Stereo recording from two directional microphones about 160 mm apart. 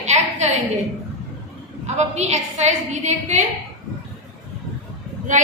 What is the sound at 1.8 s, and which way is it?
A woman's voice, 45° right (ahead or behind).